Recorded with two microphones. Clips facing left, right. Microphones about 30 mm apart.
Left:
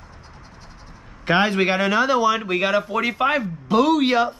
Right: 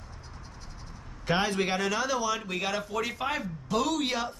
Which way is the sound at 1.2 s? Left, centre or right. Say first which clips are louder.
Left 9 dB; left.